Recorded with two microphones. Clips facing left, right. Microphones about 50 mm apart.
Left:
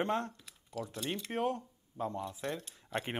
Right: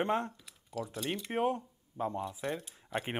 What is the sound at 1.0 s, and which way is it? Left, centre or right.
Speech, centre.